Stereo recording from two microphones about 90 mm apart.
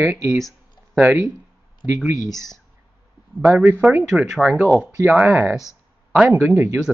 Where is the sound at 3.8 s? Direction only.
15° right (ahead or behind).